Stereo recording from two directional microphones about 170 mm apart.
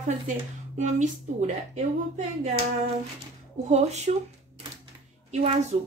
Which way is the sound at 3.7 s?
40° right (ahead or behind).